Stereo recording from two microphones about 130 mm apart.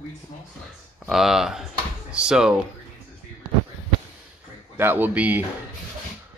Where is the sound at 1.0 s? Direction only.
5° right (ahead or behind).